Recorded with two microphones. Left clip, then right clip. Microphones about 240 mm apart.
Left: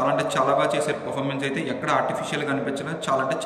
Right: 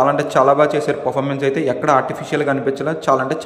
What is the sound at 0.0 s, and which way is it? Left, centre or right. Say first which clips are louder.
A man's voice: right 8 dB; right.